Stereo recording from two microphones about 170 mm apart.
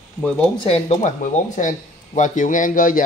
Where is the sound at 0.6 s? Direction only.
35° left (ahead or behind).